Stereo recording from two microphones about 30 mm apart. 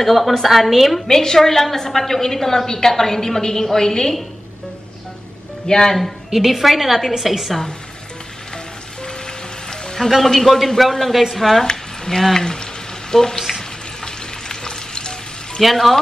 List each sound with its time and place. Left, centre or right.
0.0 s a woman's voice: centre
1.0 s a woman's voice: centre
5.7 s a woman's voice: centre
6.3 s a woman's voice: centre
9.0 s music: left
10.1 s a woman's voice: centre
11.6 s a sound: centre
12.4 s a woman's voice: left
13.4 s frying: centre
14.0 s frying: left
15.6 s a woman's voice: centre